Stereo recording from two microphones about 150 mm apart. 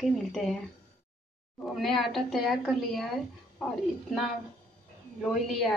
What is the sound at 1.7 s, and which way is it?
A woman's voice, centre (ahead or behind).